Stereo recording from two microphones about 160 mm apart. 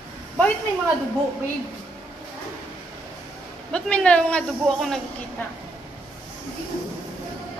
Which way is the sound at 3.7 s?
5° left (ahead or behind).